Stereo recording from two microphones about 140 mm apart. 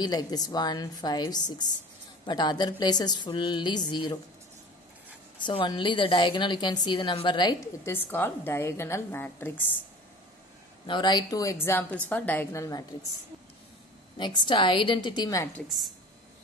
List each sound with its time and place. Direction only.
0.0 s a woman's voice: 30° left (ahead or behind)
5.4 s a woman's voice: 35° left (ahead or behind)
7.8 s a woman's voice: 15° left (ahead or behind)
10.9 s a woman's voice: 30° left (ahead or behind); by 12.6 s 15° left (ahead or behind)
12.9 s a woman's voice: 30° left (ahead or behind)
14.1 s a woman's voice: 35° left (ahead or behind)
15.5 s a woman's voice: centre (ahead or behind)